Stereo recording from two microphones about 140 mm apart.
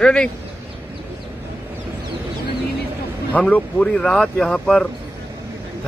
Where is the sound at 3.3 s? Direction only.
10° left (ahead or behind).